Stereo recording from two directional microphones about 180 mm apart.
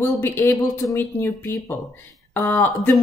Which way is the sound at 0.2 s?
15° left (ahead or behind).